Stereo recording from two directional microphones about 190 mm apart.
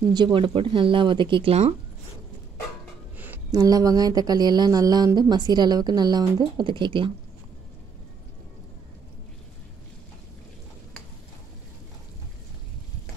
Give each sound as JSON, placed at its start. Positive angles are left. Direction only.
{"t": 0.1, "sound": "speech", "side_deg": -25}
{"t": 3.5, "sound": "speech", "side_deg": -20}